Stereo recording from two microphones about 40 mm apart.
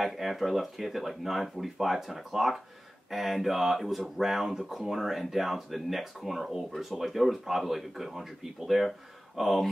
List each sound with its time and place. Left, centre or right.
0.0 s speech: centre